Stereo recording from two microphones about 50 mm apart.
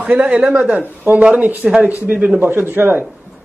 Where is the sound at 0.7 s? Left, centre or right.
Right.